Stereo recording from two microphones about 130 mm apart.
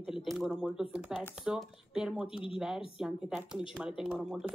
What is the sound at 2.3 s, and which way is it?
Speech, 45° left (ahead or behind).